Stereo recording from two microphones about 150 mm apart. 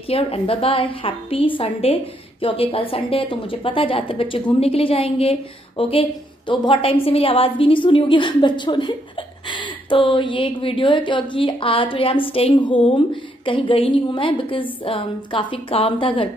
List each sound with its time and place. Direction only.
0.1 s a woman's voice: 40° left (ahead or behind)